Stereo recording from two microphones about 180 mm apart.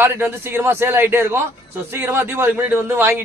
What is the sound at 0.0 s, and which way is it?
A man's voice, 15° right (ahead or behind).